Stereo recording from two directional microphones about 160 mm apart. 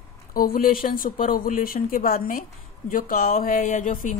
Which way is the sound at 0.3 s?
65° left (ahead or behind).